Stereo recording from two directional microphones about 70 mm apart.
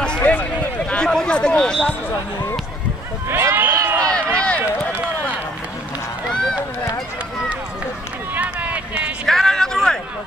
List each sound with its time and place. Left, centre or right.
0.0 s a sound: centre
3.3 s run: right
3.7 s run: right
4.1 s run: centre
8.4 s run: right
9.2 s a sound: centre